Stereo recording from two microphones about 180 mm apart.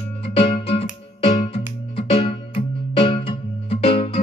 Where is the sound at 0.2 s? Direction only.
30° left (ahead or behind).